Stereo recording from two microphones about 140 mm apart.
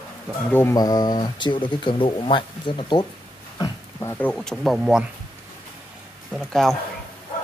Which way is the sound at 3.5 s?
25° left (ahead or behind).